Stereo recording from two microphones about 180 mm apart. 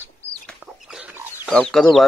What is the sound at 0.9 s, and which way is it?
Chicken, centre (ahead or behind).